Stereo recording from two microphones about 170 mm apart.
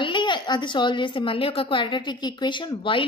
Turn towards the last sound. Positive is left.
turn(degrees=30)  # may be behind; listen again after turning